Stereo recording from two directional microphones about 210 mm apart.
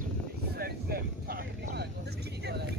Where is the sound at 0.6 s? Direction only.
45° right (ahead or behind).